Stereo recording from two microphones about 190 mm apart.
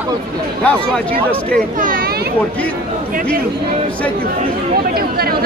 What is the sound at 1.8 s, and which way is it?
Speech, 45° right (ahead or behind).